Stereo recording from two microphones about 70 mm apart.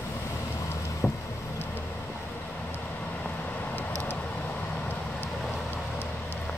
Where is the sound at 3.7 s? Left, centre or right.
Left.